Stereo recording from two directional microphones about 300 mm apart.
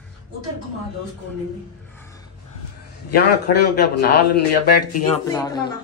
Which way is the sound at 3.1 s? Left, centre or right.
Left.